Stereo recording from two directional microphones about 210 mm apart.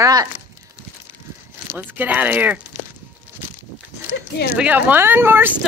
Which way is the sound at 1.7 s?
10° right (ahead or behind).